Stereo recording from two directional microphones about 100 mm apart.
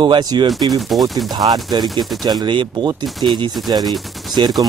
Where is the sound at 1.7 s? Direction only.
45° right (ahead or behind).